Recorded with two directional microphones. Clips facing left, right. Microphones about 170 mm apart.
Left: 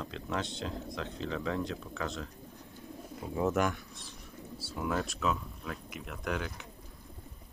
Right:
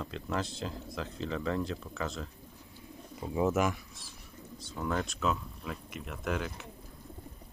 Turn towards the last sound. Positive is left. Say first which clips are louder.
# right 1 dB
turn(degrees=0)  # may be behind; listen again after turning